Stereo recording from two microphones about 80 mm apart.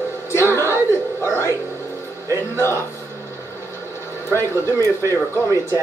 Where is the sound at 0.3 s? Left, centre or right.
Left.